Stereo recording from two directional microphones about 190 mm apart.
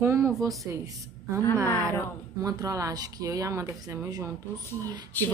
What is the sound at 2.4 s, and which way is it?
Speech, 20° right (ahead or behind).